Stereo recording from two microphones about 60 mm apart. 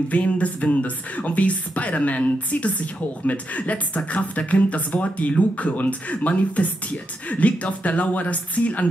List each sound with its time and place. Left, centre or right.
0.1 s speech: left